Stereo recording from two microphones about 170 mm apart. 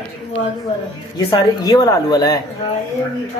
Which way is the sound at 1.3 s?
25° left (ahead or behind).